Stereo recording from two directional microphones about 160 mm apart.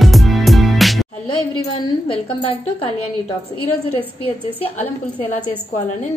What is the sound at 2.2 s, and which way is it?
Speech, 35° left (ahead or behind).